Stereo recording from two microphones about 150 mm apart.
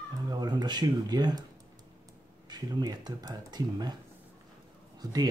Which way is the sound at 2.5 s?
25° right (ahead or behind).